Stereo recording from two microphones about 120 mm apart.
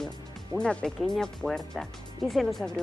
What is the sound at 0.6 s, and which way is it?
Speech, 5° left (ahead or behind).